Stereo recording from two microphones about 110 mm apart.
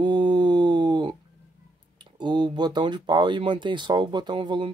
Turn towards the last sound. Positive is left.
turn(degrees=-45)  # may be behind; listen again after turning